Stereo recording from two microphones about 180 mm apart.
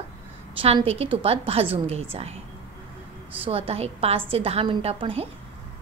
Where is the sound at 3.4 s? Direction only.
30° right (ahead or behind).